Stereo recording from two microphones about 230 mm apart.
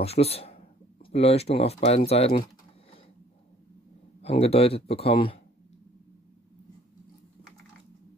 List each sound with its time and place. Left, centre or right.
0.0 s speech: left
4.2 s speech: left